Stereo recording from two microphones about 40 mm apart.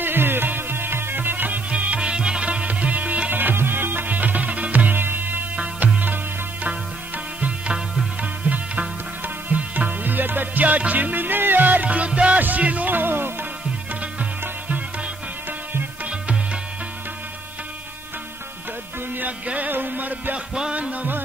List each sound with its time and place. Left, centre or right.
0.0 s music: right
2.0 s music: right
3.3 s music: right
3.5 s music: right
7.3 s music: right
7.7 s music: centre
8.2 s music: right
9.6 s music: right
12.4 s music: right
19.4 s music: right
19.7 s music: right
20.3 s music: right